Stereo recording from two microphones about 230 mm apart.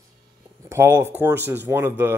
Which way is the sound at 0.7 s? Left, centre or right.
Centre.